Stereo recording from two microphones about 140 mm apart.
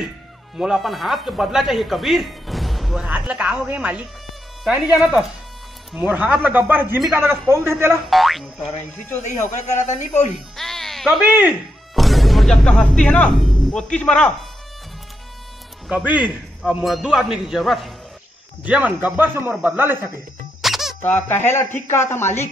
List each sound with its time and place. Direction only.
0.6 s speech: centre (ahead or behind)
3.1 s speech: 10° right (ahead or behind)
7.9 s speech: centre (ahead or behind)
9.2 s a man's voice: 55° left (ahead or behind)
10.5 s music: centre (ahead or behind)
11.2 s speech: 15° right (ahead or behind)
11.9 s speech: centre (ahead or behind)
15.9 s speech: 5° right (ahead or behind)
20.6 s squeak: centre (ahead or behind)
21.0 s speech: 15° left (ahead or behind)